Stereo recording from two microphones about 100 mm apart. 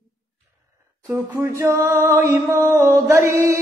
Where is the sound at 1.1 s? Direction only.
20° right (ahead or behind).